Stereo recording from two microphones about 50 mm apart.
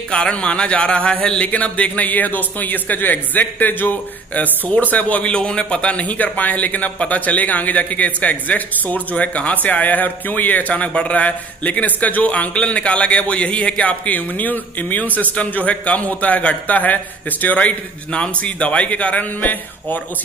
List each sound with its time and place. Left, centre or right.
0.1 s a man's voice: left
5.3 s a man's voice: left